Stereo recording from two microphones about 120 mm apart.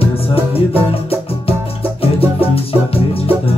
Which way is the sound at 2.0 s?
55° left (ahead or behind).